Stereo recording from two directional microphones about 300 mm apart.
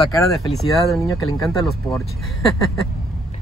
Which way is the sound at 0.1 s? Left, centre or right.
Centre.